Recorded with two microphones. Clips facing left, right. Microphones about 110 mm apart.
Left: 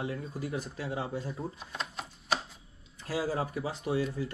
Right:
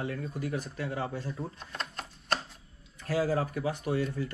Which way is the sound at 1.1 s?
5° left (ahead or behind).